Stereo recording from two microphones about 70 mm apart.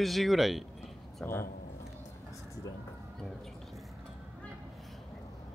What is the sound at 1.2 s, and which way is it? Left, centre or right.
Speech, left.